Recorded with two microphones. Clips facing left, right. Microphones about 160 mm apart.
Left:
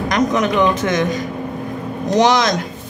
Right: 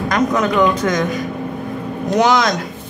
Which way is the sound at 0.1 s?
20° left (ahead or behind).